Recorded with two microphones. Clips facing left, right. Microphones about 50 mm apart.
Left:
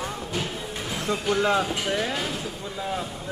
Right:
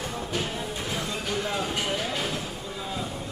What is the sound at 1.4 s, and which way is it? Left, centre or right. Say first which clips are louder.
Speech: left 4 dB; left.